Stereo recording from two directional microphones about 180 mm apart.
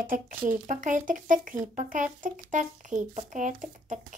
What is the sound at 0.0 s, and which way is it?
A woman's voice, 50° right (ahead or behind).